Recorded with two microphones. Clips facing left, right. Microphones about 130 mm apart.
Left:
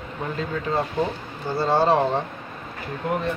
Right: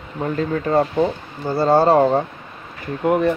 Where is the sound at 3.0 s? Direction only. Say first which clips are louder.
Right 8 dB; 60° right (ahead or behind).